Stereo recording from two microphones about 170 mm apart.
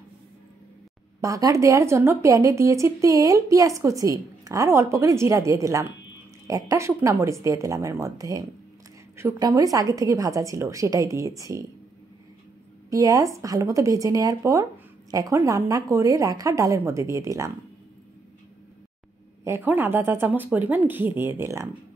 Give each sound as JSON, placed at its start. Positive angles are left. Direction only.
{"t": 1.2, "sound": "a woman's voice", "side_deg": -20}
{"t": 12.9, "sound": "speech", "side_deg": -20}
{"t": 19.4, "sound": "a woman's voice", "side_deg": -15}